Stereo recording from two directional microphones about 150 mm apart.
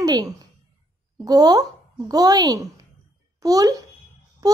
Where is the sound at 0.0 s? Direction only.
25° right (ahead or behind).